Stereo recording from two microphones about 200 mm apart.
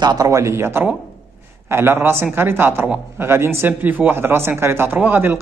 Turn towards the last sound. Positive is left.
turn(degrees=-10)  # may be behind; listen again after turning